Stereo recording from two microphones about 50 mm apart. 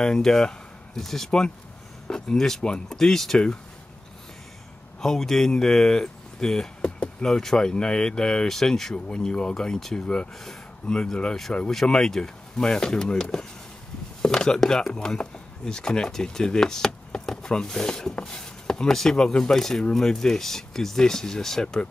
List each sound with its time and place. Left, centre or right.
0.0 s speech: centre
5.0 s speech: centre
10.4 s a sound: centre
11.0 s speech: centre
11.7 s speech: centre